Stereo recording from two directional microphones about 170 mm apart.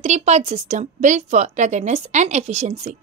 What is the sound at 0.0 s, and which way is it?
A woman's voice, 40° right (ahead or behind).